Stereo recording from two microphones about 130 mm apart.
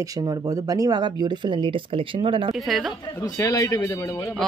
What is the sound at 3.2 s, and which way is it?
Speech, 25° left (ahead or behind).